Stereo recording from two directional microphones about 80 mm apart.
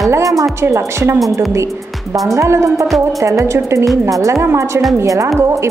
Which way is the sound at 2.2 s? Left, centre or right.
Right.